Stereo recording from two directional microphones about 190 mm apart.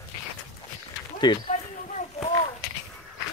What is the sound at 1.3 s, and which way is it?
Speech, 20° left (ahead or behind).